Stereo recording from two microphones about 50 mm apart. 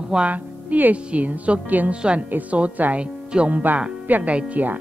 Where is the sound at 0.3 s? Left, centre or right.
Right.